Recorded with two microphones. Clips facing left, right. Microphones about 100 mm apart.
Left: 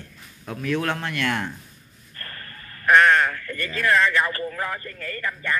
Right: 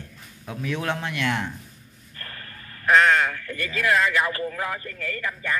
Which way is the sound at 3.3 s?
20° right (ahead or behind).